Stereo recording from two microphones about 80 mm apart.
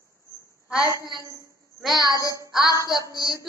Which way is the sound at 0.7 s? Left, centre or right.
Left.